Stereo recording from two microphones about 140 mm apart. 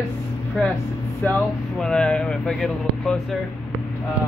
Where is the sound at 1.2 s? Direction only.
5° left (ahead or behind).